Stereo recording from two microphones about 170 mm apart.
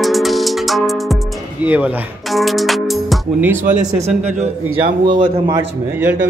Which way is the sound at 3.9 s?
40° right (ahead or behind).